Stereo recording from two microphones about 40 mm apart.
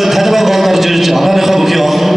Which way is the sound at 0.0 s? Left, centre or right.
Centre.